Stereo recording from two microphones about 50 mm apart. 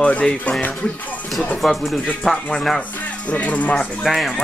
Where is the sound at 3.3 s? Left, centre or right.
Left.